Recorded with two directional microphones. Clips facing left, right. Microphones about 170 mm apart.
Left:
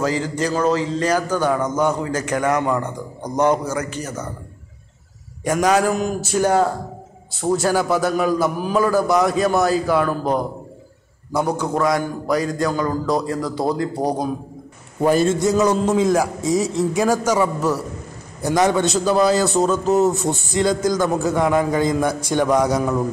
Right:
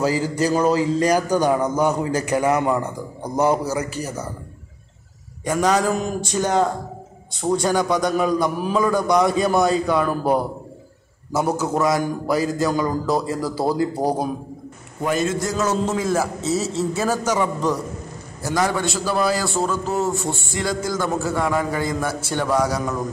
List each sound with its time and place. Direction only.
0.0 s a man's voice: 10° right (ahead or behind)
5.4 s a man's voice: 10° left (ahead or behind)
11.3 s a man's voice: 5° right (ahead or behind)
15.0 s a man's voice: 30° left (ahead or behind)
15.5 s a man's voice: 15° left (ahead or behind)
18.5 s a man's voice: 20° left (ahead or behind)